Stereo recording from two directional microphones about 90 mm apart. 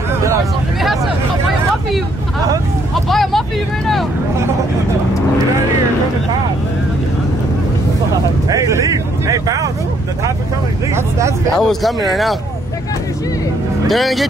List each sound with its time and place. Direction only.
3.1 s speech: centre (ahead or behind)
8.5 s speech: 40° right (ahead or behind)
10.9 s speech: 30° right (ahead or behind)
11.5 s speech: centre (ahead or behind)
13.8 s speech: centre (ahead or behind)